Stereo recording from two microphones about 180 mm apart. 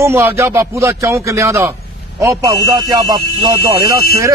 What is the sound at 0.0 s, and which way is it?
Speech, 15° right (ahead or behind).